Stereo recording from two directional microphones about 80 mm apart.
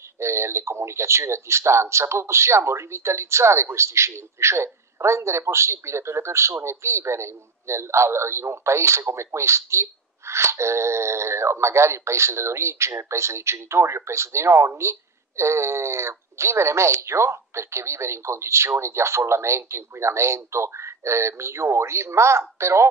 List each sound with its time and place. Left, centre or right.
0.2 s speech: right